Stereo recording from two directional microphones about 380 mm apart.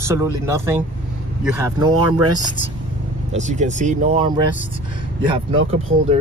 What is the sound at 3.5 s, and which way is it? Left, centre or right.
Speech, centre.